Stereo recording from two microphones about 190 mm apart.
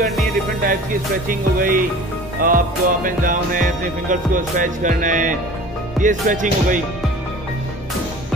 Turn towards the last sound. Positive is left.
turn(degrees=-45)  # may be behind; listen again after turning